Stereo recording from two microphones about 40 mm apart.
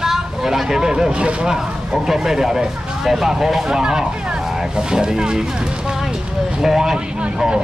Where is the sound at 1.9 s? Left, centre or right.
Centre.